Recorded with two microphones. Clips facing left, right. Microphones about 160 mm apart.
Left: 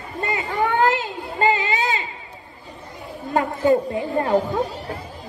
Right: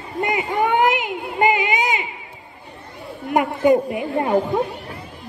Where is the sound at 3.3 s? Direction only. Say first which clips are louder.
Right 2 dB; 15° right (ahead or behind).